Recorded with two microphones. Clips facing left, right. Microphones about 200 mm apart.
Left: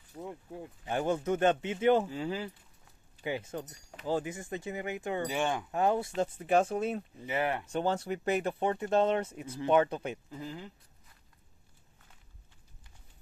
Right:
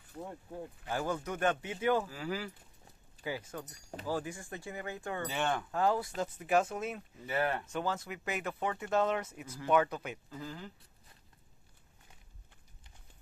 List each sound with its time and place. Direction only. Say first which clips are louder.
0.8 s speech: left 6 dB; 25° left (ahead or behind)
7.2 s speech: left 1 dB; 15° left (ahead or behind)
7.7 s speech: left 5 dB; 30° left (ahead or behind)